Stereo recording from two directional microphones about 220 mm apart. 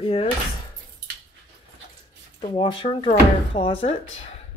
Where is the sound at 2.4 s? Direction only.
20° left (ahead or behind).